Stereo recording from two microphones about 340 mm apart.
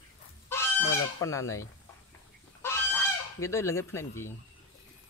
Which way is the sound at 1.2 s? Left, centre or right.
Centre.